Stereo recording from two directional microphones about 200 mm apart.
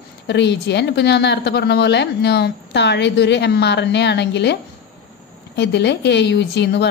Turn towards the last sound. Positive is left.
turn(degrees=60)  # may be behind; listen again after turning